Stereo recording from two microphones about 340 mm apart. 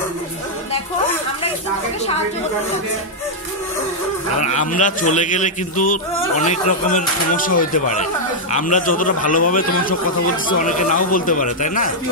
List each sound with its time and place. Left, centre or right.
4.4 s speech: left